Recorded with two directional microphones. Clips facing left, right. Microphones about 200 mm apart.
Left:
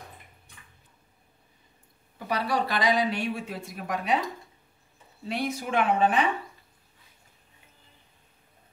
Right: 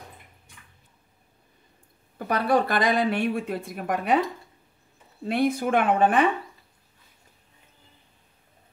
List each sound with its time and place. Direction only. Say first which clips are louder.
2.1 s speech: right 5 dB; 50° right (ahead or behind)
5.2 s speech: right 7 dB; 55° right (ahead or behind)